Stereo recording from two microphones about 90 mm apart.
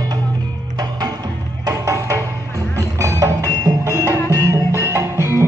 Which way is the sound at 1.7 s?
40° right (ahead or behind).